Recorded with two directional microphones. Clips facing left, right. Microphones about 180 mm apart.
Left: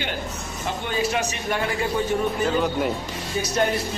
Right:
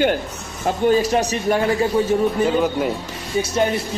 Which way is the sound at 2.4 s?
5° right (ahead or behind).